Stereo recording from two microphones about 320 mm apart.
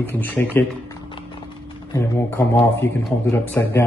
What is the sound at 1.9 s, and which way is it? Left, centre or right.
Speech, centre.